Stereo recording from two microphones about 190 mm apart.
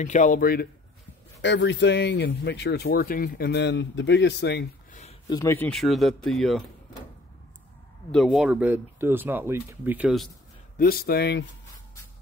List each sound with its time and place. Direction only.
0.0 s a man's voice: 40° left (ahead or behind)
1.4 s speech: 70° left (ahead or behind)
5.3 s speech: 15° left (ahead or behind)
5.7 s speech: centre (ahead or behind)
8.1 s speech: centre (ahead or behind)
10.8 s a man's voice: 50° left (ahead or behind)